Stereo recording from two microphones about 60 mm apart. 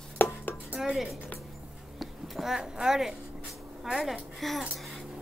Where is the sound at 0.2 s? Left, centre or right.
Left.